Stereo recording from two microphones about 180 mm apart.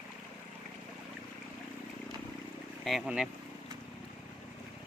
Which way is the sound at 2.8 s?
5° right (ahead or behind).